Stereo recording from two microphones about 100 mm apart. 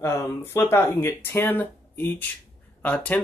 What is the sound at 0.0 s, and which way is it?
Speech, 25° left (ahead or behind).